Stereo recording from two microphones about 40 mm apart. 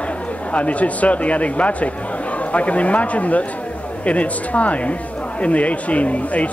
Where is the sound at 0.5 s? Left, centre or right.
Left.